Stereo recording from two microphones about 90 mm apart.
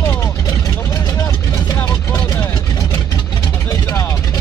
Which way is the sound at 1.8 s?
35° left (ahead or behind).